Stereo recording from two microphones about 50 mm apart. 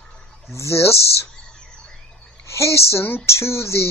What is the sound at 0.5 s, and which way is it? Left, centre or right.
Speech, left.